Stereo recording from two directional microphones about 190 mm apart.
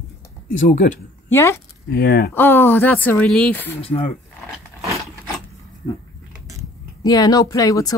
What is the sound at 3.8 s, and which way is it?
Speech, 30° left (ahead or behind).